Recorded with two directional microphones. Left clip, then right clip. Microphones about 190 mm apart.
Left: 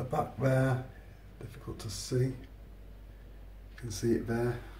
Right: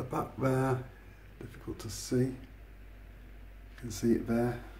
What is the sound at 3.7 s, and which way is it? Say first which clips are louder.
Speech: right 1 dB; 15° right (ahead or behind).